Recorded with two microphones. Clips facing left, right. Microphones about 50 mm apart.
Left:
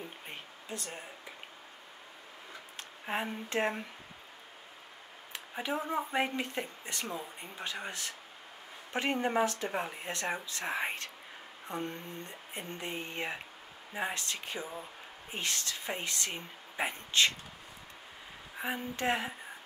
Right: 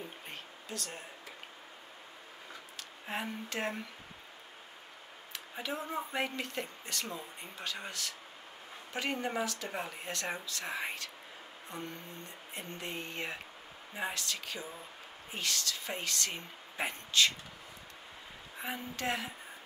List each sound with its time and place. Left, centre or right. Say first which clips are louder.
0.3 s a sound: left 1 dB; left
3.1 s speech: left 3 dB; left
5.5 s speech: left 4 dB; left
9.7 s speech: left 3 dB; centre
11.6 s a sound: left 5 dB; left
12.5 s speech: left 2 dB; left
17.1 s speech: left 1 dB; left
18.6 s speech: left 3 dB; left